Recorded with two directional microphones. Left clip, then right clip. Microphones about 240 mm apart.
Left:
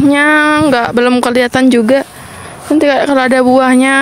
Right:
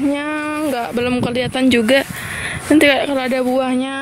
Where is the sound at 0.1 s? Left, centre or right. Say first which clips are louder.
Left 13 dB; left; by 3.0 s centre.